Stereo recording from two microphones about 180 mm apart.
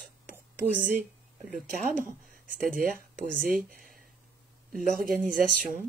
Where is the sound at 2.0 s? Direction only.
50° right (ahead or behind).